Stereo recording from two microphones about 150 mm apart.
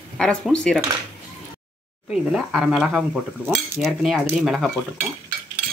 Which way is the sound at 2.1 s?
5° right (ahead or behind).